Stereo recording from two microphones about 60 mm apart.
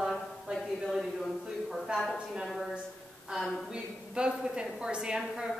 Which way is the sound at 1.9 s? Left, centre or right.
Centre.